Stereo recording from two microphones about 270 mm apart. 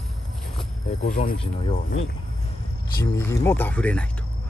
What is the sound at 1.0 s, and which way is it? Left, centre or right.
Speech, left.